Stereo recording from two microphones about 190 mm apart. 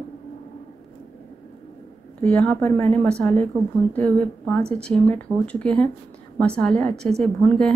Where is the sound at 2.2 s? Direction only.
5° left (ahead or behind).